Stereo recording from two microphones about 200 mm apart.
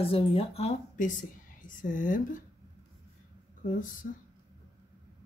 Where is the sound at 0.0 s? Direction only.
30° left (ahead or behind).